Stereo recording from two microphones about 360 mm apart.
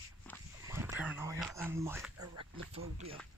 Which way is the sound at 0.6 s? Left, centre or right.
Centre.